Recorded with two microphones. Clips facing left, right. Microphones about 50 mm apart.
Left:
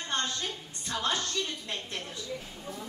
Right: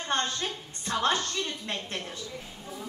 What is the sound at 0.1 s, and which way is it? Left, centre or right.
Speech, right.